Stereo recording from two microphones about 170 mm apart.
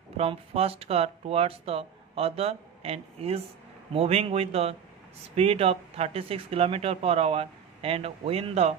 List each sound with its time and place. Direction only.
0.2 s speech: 35° right (ahead or behind)